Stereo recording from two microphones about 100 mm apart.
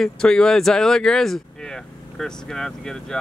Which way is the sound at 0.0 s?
5° left (ahead or behind).